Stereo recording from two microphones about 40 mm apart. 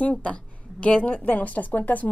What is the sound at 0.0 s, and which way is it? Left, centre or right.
A woman's voice, left.